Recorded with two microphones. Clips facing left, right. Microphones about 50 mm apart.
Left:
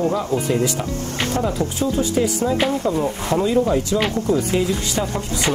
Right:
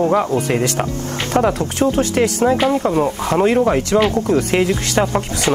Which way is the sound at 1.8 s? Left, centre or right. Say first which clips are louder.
Right 5 dB; right.